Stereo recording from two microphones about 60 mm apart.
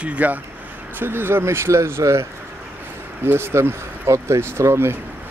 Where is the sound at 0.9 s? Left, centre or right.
Right.